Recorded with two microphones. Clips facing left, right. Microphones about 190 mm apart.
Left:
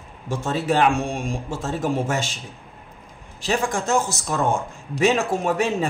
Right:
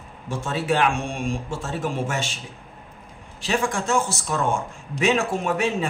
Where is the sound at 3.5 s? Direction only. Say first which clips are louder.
Left 1 dB; 40° left (ahead or behind).